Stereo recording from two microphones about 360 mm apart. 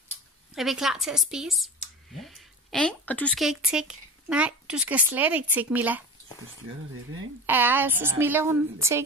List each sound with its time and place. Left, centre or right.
0.6 s a woman's voice: centre
7.4 s a woman's voice: centre